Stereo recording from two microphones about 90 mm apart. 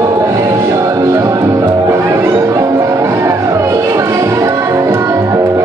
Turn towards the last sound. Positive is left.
turn(degrees=-35)  # may be behind; listen again after turning